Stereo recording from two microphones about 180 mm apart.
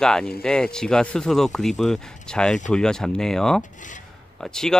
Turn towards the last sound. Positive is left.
turn(degrees=5)  # may be behind; listen again after turning